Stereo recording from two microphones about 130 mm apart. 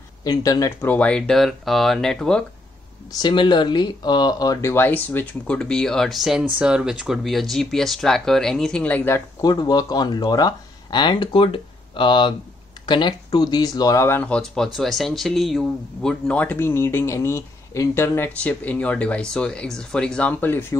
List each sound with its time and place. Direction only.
0.2 s speech: 30° left (ahead or behind)
0.8 s speech: 10° left (ahead or behind)
3.2 s speech: 35° left (ahead or behind); by 9.2 s 15° left (ahead or behind)
9.4 s speech: 30° left (ahead or behind)
14.2 s speech: 5° left (ahead or behind)